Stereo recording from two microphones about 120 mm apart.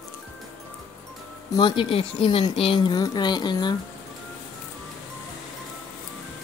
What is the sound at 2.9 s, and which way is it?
Speech, 35° left (ahead or behind).